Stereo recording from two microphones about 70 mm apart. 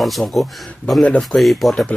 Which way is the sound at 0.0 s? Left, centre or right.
Centre.